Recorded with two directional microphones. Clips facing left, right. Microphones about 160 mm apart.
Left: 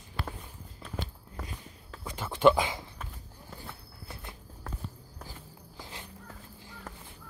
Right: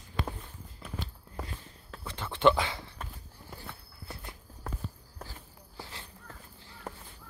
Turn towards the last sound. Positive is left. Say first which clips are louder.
# even
turn(degrees=15)  # may be behind; listen again after turning